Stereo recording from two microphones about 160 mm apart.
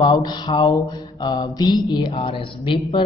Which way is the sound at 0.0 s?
25° left (ahead or behind).